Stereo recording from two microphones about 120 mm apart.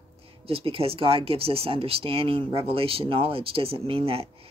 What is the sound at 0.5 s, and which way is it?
Speech, 55° right (ahead or behind).